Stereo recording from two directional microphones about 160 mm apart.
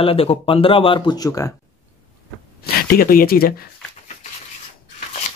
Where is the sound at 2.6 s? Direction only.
70° left (ahead or behind).